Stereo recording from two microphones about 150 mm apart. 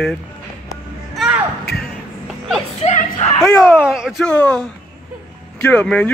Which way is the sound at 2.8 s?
45° left (ahead or behind).